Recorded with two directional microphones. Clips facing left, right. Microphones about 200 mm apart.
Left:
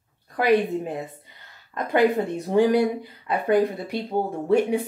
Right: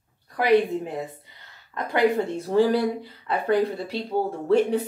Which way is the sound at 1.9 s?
15° left (ahead or behind).